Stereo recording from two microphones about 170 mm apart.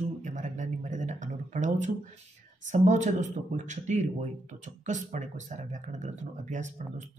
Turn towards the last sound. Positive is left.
turn(degrees=-45)  # may be behind; listen again after turning